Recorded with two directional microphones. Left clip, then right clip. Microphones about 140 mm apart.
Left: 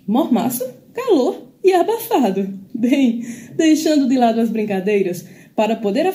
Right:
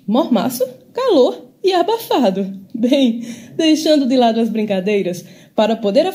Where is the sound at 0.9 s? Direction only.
30° right (ahead or behind).